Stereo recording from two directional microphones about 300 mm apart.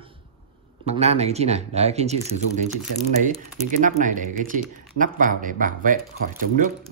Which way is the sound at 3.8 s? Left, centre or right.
Right.